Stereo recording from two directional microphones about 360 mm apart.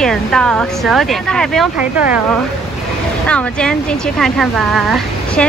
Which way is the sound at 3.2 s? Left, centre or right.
Centre.